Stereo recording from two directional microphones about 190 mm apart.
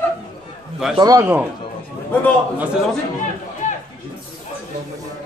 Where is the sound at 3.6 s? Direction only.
40° left (ahead or behind).